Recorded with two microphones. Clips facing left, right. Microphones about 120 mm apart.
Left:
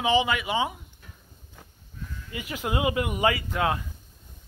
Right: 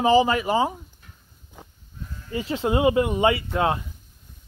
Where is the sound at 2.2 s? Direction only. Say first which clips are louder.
Right 8 dB; 30° right (ahead or behind).